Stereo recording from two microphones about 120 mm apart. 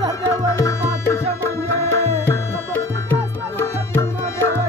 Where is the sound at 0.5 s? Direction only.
25° left (ahead or behind).